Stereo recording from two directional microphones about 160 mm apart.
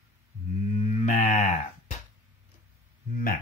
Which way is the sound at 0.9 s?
50° left (ahead or behind).